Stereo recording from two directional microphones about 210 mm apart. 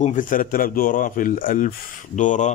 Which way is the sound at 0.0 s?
40° left (ahead or behind).